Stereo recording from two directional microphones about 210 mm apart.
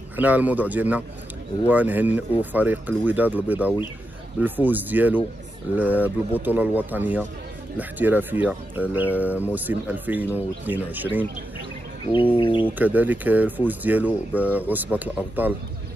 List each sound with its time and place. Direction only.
0.1 s speech: 5° right (ahead or behind)
12.1 s bird: 25° left (ahead or behind)
12.7 s speech: 10° right (ahead or behind)